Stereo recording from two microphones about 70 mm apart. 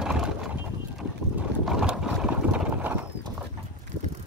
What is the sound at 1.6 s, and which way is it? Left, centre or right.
Boat, centre.